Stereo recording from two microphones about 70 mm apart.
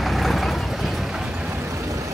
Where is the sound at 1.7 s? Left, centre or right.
Right.